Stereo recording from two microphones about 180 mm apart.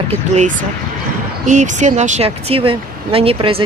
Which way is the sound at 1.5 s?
40° right (ahead or behind).